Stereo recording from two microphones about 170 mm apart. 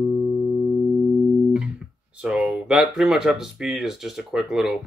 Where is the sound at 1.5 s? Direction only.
5° right (ahead or behind).